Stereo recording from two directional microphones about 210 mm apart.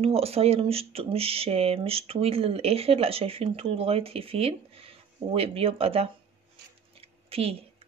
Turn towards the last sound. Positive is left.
turn(degrees=-30)  # may be behind; listen again after turning